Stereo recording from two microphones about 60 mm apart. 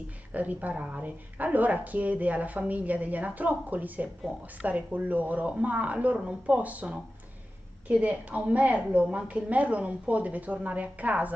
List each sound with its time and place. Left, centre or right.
0.3 s speech: right